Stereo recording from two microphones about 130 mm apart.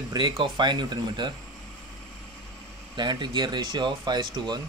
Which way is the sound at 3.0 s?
35° right (ahead or behind).